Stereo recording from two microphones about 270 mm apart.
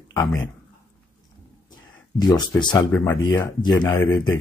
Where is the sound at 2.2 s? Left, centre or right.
Centre.